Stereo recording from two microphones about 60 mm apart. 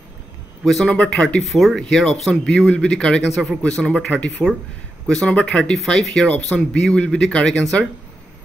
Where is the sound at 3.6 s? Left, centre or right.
Centre.